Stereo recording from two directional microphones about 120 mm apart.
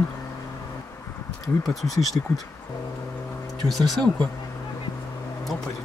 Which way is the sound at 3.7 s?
Centre (ahead or behind).